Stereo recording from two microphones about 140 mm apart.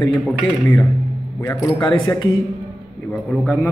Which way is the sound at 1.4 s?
25° left (ahead or behind).